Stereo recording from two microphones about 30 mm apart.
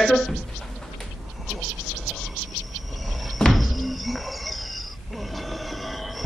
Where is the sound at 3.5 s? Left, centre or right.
Centre.